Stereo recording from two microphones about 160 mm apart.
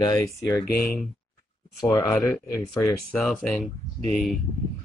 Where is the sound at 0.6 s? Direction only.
65° left (ahead or behind).